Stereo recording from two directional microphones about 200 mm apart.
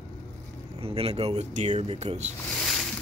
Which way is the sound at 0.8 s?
30° right (ahead or behind).